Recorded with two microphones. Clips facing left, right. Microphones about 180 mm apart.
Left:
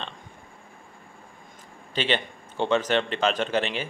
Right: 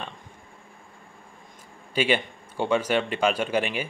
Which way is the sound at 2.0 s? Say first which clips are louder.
Right 3 dB; 10° right (ahead or behind).